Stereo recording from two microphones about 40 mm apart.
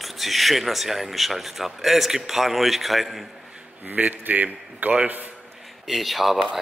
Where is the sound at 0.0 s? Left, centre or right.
Centre.